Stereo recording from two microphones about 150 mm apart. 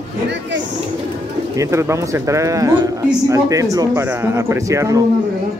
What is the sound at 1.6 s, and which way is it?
A man's voice, 20° right (ahead or behind).